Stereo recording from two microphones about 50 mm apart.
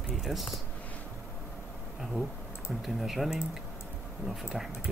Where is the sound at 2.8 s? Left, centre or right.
Centre.